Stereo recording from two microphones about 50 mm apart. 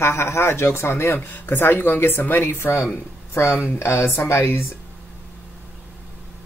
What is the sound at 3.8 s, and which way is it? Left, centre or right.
Speech, left.